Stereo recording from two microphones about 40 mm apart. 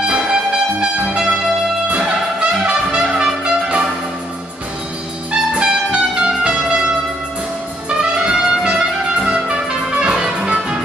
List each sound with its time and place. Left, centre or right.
0.3 s music: right
5.5 s music: right
8.0 s trumpet: centre
9.3 s music: centre